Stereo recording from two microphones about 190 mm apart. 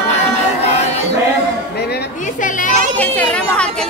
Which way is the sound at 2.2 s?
45° left (ahead or behind).